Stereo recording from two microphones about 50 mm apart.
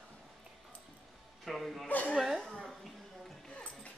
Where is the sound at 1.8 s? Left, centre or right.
Left.